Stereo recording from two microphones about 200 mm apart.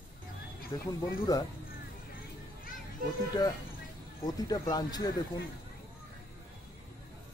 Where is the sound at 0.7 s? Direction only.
15° left (ahead or behind).